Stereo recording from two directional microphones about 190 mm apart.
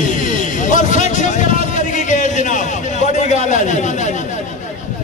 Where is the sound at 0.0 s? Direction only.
40° left (ahead or behind).